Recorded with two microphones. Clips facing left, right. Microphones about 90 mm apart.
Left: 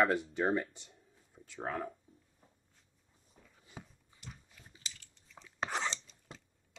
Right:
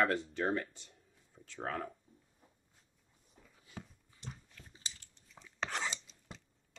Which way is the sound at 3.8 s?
10° left (ahead or behind).